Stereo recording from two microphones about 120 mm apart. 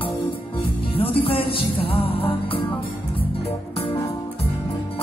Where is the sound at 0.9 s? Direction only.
50° left (ahead or behind).